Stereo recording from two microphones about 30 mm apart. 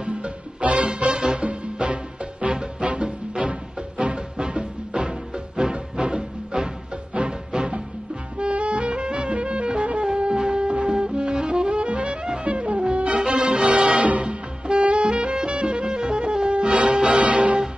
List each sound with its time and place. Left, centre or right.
0.0 s music: right
1.2 s music: right
2.4 s music: right
3.0 s music: right
14.2 s music: right